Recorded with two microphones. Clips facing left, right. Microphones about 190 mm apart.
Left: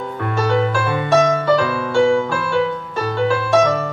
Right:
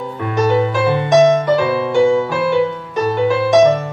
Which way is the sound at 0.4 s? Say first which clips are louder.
Right 4 dB; 20° right (ahead or behind).